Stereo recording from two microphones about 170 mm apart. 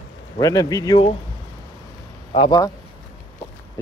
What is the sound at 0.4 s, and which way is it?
Speech, 20° left (ahead or behind).